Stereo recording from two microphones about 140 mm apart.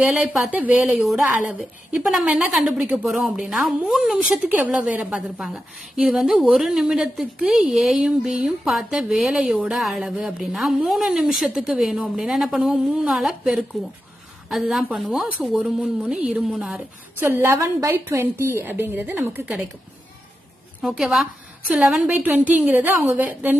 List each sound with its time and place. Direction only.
0.1 s a woman's voice: 10° right (ahead or behind)
17.2 s a woman's voice: 15° right (ahead or behind)
20.8 s a woman's voice: 5° right (ahead or behind)